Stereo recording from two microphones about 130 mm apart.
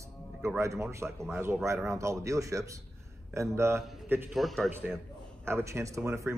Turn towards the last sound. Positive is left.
turn(degrees=-20)  # may be behind; listen again after turning